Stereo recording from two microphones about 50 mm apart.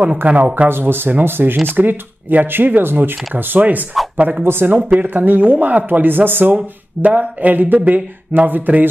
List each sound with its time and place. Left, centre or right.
0.2 s speech: right
0.7 s speech: right
4.4 s speech: right
4.7 s speech: right
5.0 s speech: right
6.5 s speech: right